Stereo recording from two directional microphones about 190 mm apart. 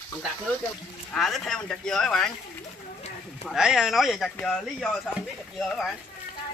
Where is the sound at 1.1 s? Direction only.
Centre (ahead or behind).